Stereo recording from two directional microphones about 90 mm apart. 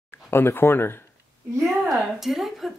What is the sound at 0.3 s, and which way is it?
Speech, 25° left (ahead or behind).